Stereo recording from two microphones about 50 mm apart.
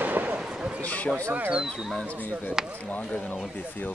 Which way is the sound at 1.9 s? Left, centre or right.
Left.